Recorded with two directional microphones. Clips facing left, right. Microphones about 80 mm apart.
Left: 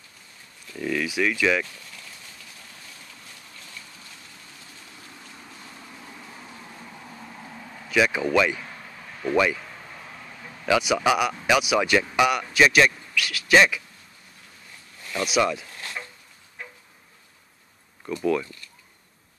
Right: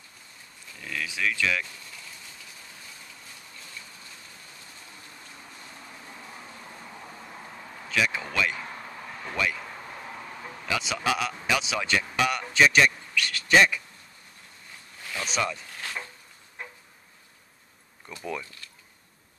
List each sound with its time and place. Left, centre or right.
0.7 s speech: centre
7.9 s speech: centre
10.7 s speech: centre
15.1 s speech: centre
18.2 s speech: centre